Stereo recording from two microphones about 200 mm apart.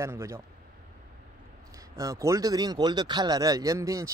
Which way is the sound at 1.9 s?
15° right (ahead or behind).